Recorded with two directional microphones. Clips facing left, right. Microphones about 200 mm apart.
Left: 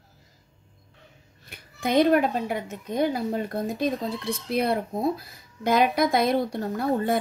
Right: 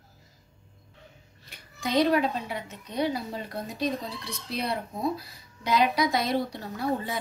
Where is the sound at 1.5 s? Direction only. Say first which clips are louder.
Left 4 dB; 55° left (ahead or behind).